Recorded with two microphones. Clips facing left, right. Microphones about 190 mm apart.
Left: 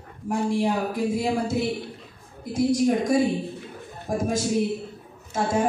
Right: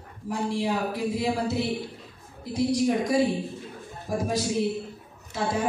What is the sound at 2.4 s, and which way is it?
A woman's voice, 50° left (ahead or behind).